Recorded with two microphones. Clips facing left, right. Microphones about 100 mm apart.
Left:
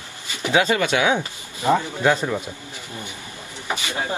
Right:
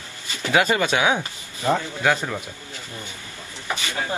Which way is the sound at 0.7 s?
20° right (ahead or behind).